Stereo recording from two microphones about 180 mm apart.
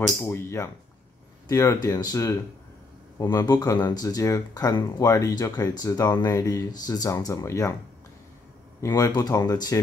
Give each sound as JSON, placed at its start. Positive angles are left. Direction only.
{"t": 0.2, "sound": "speech", "side_deg": 15}
{"t": 8.8, "sound": "speech", "side_deg": 20}